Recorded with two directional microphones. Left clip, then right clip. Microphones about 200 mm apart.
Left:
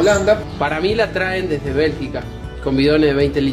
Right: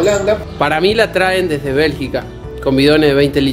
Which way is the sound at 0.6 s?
55° right (ahead or behind).